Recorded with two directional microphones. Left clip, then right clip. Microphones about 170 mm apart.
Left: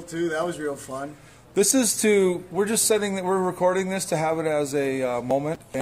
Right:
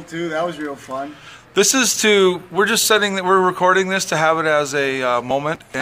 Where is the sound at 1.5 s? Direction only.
15° left (ahead or behind).